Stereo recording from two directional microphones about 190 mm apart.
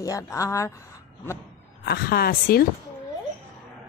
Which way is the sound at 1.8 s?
55° left (ahead or behind).